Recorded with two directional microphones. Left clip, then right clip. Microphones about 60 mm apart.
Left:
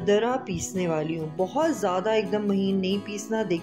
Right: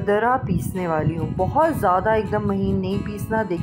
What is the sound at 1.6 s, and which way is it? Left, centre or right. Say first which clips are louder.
Speech: right 7 dB; centre.